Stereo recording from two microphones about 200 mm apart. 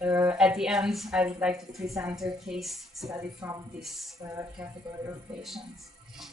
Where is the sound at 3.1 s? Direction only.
15° right (ahead or behind).